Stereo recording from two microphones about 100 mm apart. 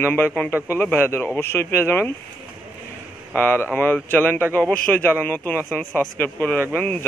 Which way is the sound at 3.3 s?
20° left (ahead or behind).